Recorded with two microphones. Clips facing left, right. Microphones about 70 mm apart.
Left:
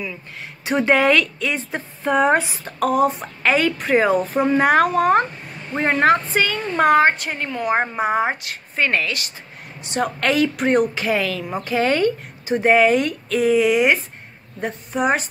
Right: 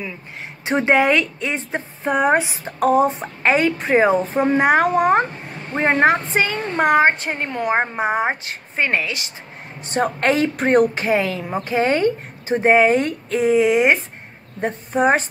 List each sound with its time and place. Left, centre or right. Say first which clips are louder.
0.7 s a woman's voice: even; right
2.1 s a woman's voice: even; centre
2.6 s a woman's voice: right 2 dB; right
7.7 s a woman's voice: left 1 dB; right
9.8 s speech: right 2 dB; right
11.1 s a woman's voice: right 2 dB; right